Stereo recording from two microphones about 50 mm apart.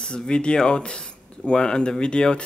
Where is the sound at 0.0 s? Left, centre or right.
Centre.